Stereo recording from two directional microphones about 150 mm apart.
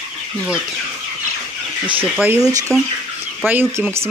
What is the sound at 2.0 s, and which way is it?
Speech, 15° right (ahead or behind).